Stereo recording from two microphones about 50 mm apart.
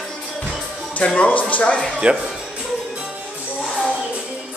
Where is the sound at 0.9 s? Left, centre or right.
Left.